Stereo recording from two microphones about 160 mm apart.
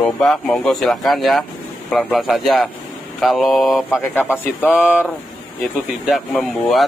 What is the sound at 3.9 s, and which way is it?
Speech, 15° left (ahead or behind).